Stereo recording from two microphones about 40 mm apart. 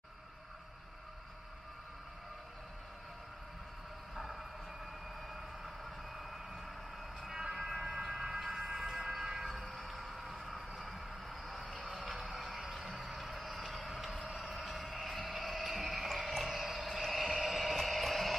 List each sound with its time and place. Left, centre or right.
4.1 s train: centre
5.9 s vehicle: centre
7.2 s train: centre
9.8 s vehicle: centre
14.5 s a sound: centre